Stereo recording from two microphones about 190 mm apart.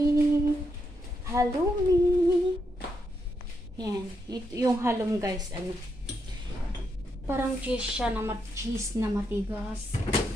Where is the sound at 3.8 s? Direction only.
20° right (ahead or behind).